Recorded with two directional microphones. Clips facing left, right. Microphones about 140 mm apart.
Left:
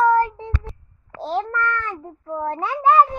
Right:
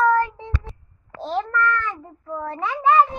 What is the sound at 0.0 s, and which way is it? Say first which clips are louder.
Child singing: left 2 dB; 35° left (ahead or behind).